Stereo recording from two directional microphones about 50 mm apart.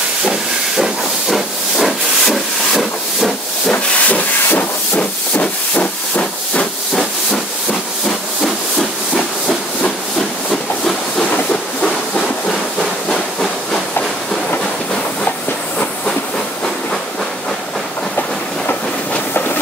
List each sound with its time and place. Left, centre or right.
0.2 s hiss: centre
3.7 s steam: left
10.5 s hiss: centre